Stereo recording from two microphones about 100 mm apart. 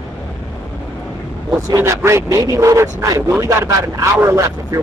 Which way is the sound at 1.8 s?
30° right (ahead or behind).